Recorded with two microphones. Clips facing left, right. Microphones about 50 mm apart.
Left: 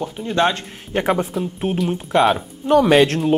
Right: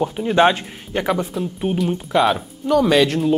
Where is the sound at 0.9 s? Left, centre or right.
Left.